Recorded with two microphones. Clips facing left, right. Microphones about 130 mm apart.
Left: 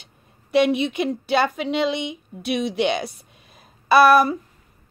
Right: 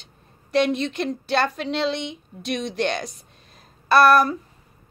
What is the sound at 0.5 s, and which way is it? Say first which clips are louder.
A woman's voice: left 3 dB; 10° left (ahead or behind).